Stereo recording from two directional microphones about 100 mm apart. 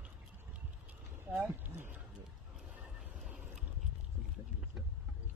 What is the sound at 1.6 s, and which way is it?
Speech, 15° right (ahead or behind).